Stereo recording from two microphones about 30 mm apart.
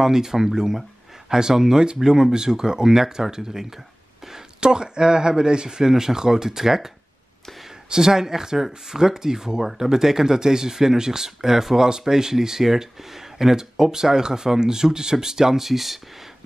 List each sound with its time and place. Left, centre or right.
0.0 s speech: centre
7.9 s speech: centre